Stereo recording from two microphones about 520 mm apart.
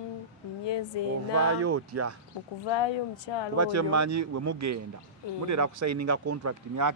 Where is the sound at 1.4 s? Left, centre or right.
Right.